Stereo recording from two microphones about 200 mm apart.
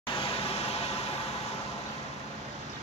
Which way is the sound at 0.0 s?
25° left (ahead or behind).